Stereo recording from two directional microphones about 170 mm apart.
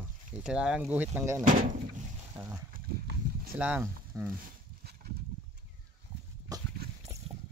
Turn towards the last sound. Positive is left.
turn(degrees=-20)  # may be behind; listen again after turning